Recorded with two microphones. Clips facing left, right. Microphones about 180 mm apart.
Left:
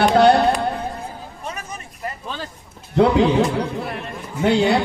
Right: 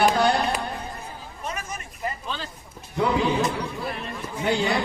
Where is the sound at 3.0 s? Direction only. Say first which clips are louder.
Left 7 dB; 70° left (ahead or behind).